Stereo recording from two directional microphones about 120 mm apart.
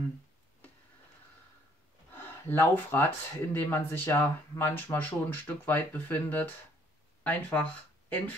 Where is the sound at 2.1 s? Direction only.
15° left (ahead or behind).